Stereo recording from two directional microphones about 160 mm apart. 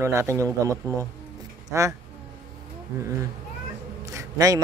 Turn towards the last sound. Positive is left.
turn(degrees=-20)  # may be behind; listen again after turning